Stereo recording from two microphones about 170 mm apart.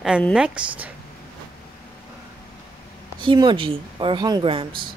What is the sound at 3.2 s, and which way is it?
Speech, 30° right (ahead or behind).